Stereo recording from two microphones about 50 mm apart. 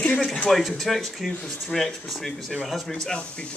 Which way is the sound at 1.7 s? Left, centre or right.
Centre.